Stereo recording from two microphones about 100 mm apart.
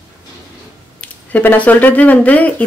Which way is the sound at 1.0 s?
15° left (ahead or behind).